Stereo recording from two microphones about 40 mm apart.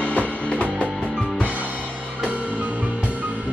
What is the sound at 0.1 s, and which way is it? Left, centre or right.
Music, left.